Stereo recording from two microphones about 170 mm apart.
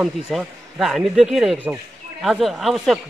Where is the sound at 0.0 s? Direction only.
Centre (ahead or behind).